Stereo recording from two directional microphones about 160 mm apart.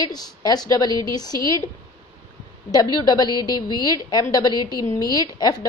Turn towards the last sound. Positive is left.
turn(degrees=25)  # may be behind; listen again after turning